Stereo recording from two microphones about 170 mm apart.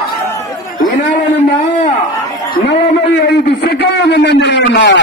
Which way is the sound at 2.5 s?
65° left (ahead or behind).